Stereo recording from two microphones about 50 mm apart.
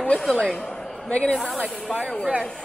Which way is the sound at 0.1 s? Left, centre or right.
Centre.